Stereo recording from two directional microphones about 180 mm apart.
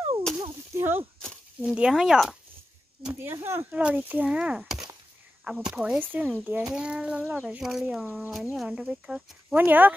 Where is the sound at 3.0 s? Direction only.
15° right (ahead or behind).